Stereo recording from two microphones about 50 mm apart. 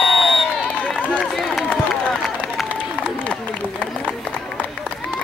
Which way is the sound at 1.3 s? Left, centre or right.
Centre.